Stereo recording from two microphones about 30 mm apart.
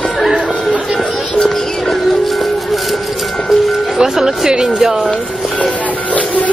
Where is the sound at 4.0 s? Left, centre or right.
Centre.